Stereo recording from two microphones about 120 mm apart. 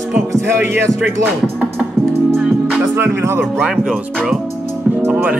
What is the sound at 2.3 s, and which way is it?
Music, 5° right (ahead or behind).